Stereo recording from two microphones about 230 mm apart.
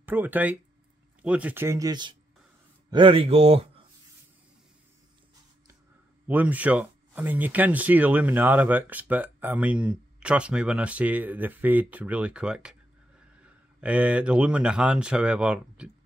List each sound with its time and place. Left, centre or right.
0.0 s speech: centre; by 3.8 s right
6.2 s speech: centre